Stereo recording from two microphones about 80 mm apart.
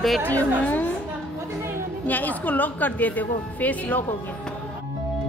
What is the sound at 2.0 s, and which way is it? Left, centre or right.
A woman's voice, left.